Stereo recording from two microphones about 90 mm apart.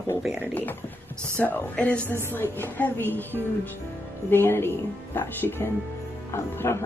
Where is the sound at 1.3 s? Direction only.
20° left (ahead or behind).